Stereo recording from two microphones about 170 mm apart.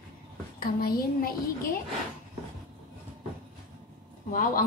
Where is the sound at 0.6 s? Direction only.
60° left (ahead or behind).